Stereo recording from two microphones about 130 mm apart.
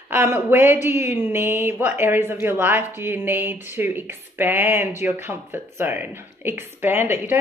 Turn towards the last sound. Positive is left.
turn(degrees=-15)  # may be behind; listen again after turning